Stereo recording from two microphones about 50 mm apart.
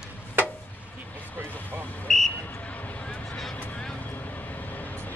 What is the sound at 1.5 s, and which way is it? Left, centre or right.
Vehicle, left.